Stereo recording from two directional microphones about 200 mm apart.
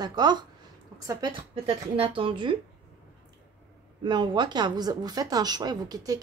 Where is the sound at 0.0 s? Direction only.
20° right (ahead or behind).